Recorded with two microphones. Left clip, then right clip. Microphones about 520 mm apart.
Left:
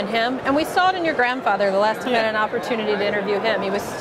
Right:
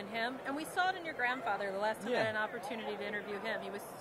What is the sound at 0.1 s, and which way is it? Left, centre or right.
A woman's voice, left.